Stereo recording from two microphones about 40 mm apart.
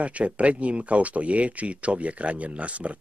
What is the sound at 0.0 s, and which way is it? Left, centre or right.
Speech, right.